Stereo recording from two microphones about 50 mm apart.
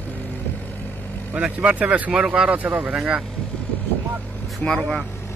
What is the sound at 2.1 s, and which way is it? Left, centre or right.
Speech, centre.